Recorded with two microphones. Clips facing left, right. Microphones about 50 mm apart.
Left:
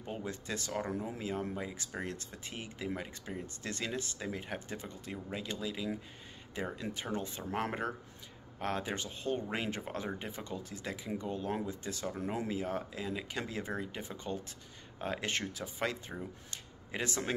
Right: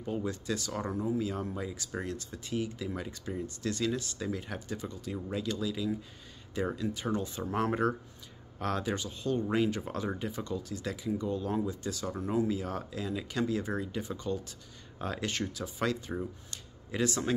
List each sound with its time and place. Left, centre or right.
0.0 s speech: left
7.4 s speech: centre
8.5 s speech: centre
9.0 s speech: left
16.4 s a sound: left